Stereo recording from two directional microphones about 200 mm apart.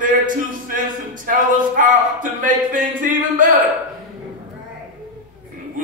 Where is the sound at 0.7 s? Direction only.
40° right (ahead or behind).